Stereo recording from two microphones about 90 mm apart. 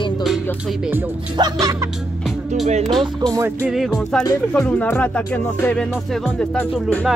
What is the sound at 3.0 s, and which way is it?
Music, 50° right (ahead or behind).